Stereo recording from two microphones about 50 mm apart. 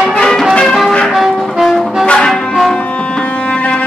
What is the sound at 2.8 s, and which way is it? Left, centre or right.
Music, left.